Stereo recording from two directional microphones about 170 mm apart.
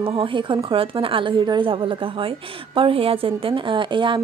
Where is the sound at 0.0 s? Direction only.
30° right (ahead or behind).